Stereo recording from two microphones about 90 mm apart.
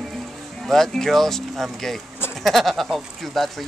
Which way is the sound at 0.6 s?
5° left (ahead or behind).